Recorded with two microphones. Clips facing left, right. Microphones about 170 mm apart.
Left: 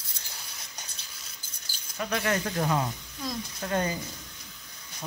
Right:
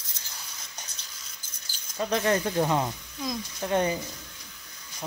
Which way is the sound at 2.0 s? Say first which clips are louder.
Right 3 dB; 30° right (ahead or behind).